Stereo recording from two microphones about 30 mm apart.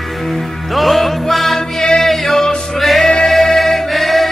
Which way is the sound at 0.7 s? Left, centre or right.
Centre.